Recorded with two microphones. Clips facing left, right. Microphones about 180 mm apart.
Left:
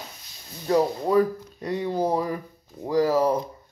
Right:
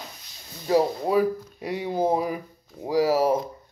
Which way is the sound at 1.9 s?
20° right (ahead or behind).